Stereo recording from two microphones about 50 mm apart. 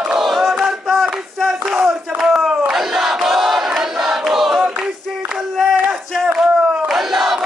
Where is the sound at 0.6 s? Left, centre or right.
Centre.